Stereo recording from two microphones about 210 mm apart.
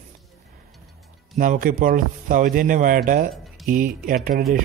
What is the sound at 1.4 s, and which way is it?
Speech, 40° right (ahead or behind).